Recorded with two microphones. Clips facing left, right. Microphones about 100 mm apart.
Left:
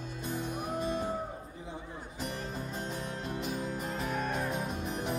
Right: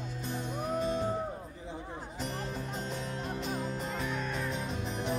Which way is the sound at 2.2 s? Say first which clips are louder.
Even; 50° left (ahead or behind).